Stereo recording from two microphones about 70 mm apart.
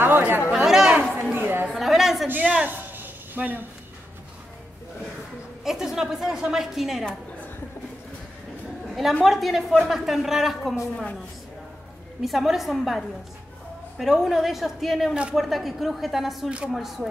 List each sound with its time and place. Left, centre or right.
0.0 s chatter: right
0.5 s chatter: centre
1.3 s a sound: right
1.7 s a sound: centre
2.2 s a man's voice: right
2.5 s a sound: right
5.6 s speech: centre
9.2 s speech: centre
12.2 s speech: centre
16.4 s speech: centre
16.7 s speech: centre